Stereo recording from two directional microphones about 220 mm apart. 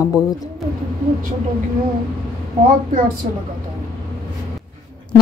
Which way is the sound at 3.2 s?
35° right (ahead or behind).